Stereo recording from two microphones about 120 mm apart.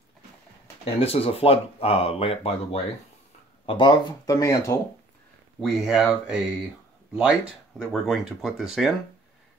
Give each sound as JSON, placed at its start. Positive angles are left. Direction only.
{"t": 0.8, "sound": "speech", "side_deg": 55}
{"t": 3.6, "sound": "speech", "side_deg": 45}
{"t": 4.3, "sound": "speech", "side_deg": 25}
{"t": 5.6, "sound": "speech", "side_deg": -5}
{"t": 7.8, "sound": "speech", "side_deg": 0}